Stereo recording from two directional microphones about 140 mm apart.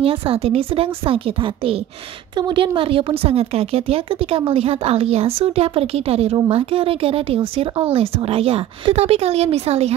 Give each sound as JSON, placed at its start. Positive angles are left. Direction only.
{"t": 0.0, "sound": "a woman's voice", "side_deg": -40}